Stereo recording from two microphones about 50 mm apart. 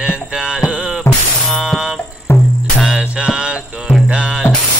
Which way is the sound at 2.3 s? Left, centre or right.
Left.